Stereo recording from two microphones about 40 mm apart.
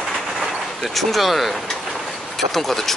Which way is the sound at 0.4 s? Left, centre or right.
Centre.